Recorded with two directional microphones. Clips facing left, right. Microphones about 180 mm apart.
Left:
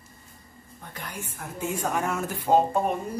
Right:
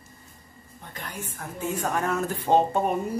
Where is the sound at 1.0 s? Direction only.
10° left (ahead or behind).